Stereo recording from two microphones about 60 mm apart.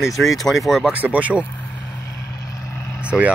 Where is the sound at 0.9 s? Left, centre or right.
Right.